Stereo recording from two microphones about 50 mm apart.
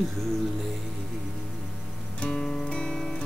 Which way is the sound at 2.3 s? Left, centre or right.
Centre.